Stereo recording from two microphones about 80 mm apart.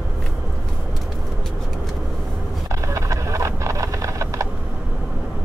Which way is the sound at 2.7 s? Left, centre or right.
Right.